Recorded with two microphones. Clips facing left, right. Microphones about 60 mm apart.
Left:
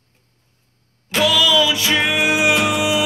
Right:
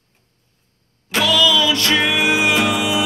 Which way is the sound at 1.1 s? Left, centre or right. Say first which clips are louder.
Even; centre.